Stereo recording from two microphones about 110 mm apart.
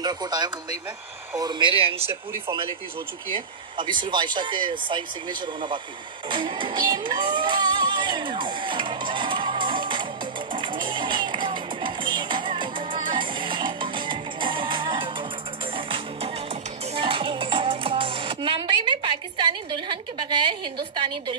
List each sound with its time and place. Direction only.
0.0 s speech: 40° right (ahead or behind); by 2.0 s 60° right (ahead or behind)
3.3 s speech: 45° right (ahead or behind)
6.2 s music: 45° right (ahead or behind)
19.9 s speech: 50° right (ahead or behind)